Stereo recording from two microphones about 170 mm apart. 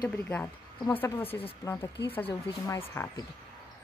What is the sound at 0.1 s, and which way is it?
Speech, 10° left (ahead or behind).